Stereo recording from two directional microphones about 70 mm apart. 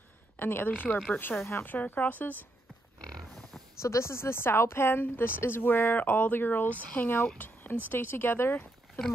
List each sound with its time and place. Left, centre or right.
0.4 s a woman's voice: left
1.7 s speech: left
3.0 s pig: centre
3.8 s a woman's voice: left